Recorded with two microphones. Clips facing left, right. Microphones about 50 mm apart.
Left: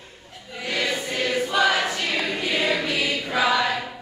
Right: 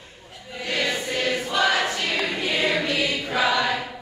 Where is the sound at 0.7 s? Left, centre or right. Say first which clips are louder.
Even; centre.